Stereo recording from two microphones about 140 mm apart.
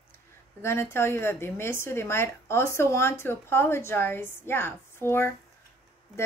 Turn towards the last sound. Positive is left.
turn(degrees=15)  # may be behind; listen again after turning